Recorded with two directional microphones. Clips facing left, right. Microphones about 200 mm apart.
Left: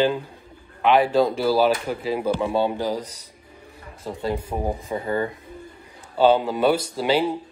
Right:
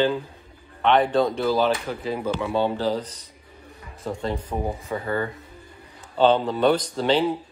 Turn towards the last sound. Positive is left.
turn(degrees=10)  # may be behind; listen again after turning